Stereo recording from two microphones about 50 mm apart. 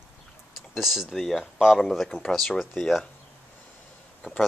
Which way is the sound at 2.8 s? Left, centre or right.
Centre.